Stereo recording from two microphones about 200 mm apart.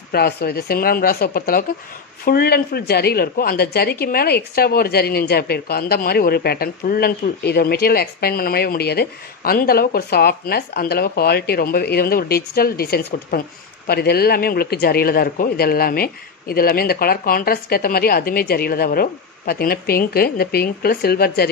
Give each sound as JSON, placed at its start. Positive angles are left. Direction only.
{"t": 0.1, "sound": "speech", "side_deg": 50}